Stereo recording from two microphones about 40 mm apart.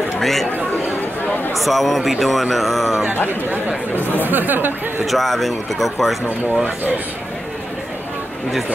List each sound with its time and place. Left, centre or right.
0.2 s speech: centre
1.5 s speech: centre
4.3 s speech: right
5.0 s speech: centre